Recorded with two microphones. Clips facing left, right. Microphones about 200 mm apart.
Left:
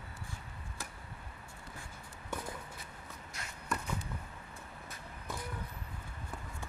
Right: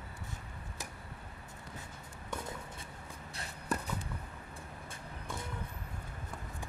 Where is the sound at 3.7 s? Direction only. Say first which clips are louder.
Right 2 dB; 35° right (ahead or behind).